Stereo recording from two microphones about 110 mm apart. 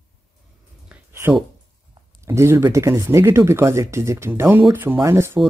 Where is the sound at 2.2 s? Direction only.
25° right (ahead or behind).